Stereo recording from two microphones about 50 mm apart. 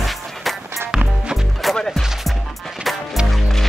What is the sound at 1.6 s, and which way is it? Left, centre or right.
Music, centre.